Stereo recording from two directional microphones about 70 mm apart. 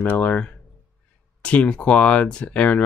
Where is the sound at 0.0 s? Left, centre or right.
Left.